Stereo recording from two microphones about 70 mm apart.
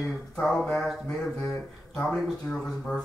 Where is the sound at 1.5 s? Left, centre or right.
Centre.